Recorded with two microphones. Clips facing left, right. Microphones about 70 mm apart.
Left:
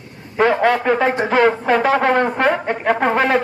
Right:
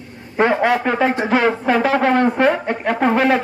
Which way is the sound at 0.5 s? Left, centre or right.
Centre.